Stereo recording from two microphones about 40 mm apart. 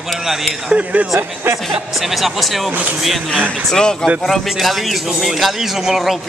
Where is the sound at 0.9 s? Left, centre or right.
Right.